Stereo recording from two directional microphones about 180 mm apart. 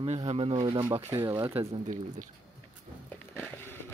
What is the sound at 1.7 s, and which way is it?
Speech, 45° right (ahead or behind).